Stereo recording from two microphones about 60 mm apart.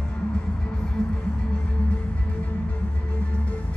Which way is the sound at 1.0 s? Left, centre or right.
Centre.